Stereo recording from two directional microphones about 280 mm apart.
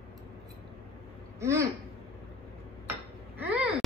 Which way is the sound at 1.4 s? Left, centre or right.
Centre.